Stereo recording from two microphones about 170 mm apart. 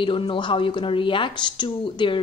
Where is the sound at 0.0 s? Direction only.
30° left (ahead or behind).